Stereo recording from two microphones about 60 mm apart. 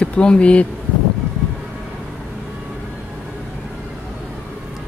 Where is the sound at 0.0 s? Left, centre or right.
Centre.